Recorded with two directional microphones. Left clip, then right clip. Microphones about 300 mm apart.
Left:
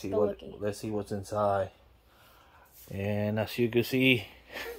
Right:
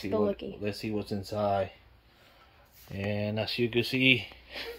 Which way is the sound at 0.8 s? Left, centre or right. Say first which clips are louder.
Even; centre.